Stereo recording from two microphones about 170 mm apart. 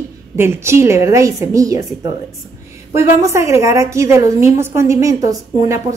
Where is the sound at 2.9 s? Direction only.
15° right (ahead or behind).